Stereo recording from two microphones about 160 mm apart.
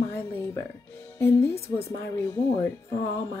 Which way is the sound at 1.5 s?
40° left (ahead or behind).